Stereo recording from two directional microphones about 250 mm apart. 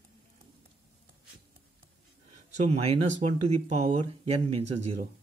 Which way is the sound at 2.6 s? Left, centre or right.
Right.